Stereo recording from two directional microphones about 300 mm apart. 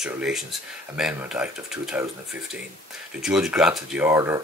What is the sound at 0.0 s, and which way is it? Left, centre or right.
Speech, centre.